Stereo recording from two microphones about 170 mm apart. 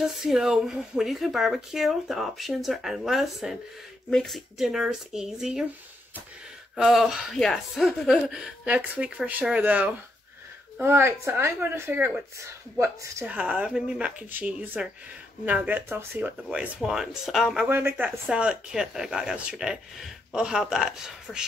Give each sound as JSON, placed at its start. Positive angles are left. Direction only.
{"t": 0.0, "sound": "speech", "side_deg": 0}
{"t": 6.8, "sound": "speech", "side_deg": 0}
{"t": 17.6, "sound": "speech", "side_deg": -15}